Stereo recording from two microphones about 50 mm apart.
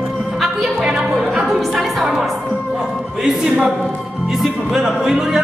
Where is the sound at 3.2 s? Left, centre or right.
Centre.